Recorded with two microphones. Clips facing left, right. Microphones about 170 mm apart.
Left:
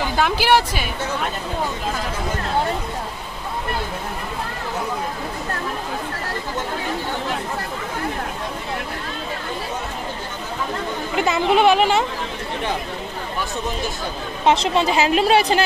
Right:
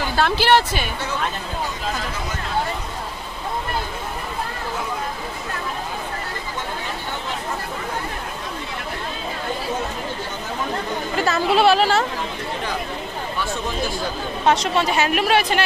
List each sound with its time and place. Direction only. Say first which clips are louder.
0.1 s speech: right 1 dB; 10° left (ahead or behind)
11.1 s speech: left 1 dB; 15° left (ahead or behind)
14.4 s a woman's voice: left 2 dB; 25° left (ahead or behind)